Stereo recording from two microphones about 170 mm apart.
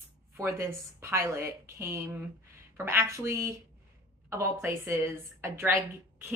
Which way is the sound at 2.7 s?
15° right (ahead or behind).